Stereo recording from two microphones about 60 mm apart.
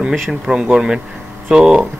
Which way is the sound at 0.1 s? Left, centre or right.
Centre.